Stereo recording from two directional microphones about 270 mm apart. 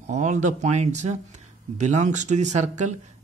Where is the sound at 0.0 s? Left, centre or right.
Right.